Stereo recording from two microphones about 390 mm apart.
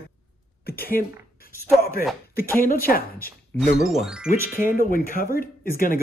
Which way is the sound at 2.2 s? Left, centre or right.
Left.